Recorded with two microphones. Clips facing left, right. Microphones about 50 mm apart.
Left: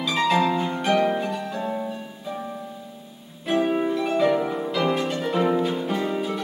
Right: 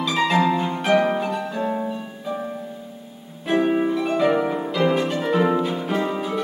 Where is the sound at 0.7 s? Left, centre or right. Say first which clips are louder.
Right 2 dB; centre.